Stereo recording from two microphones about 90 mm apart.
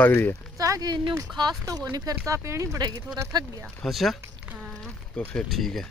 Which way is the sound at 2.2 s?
35° right (ahead or behind).